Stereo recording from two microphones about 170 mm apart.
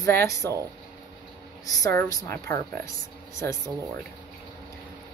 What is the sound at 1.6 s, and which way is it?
Speech, 20° left (ahead or behind).